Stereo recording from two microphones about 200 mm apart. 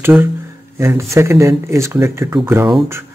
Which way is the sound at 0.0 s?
10° right (ahead or behind).